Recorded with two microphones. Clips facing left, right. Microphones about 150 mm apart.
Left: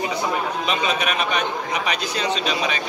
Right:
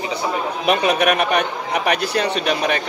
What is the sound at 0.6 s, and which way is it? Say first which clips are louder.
A man's voice: right 10 dB; 65° right (ahead or behind).